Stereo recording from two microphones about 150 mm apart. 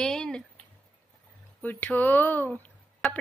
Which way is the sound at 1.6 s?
10° left (ahead or behind).